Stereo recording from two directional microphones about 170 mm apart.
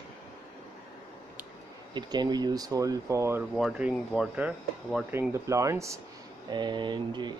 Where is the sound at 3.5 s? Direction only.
5° right (ahead or behind).